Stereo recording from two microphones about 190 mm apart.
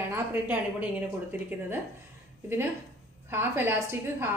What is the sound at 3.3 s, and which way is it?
Speech, 10° right (ahead or behind).